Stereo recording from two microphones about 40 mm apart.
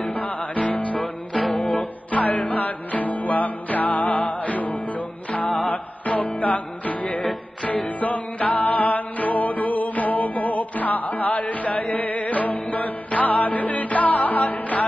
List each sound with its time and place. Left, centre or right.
0.1 s music: left
2.0 s music: left